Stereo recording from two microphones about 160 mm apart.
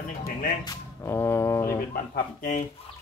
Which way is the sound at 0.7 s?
15° left (ahead or behind).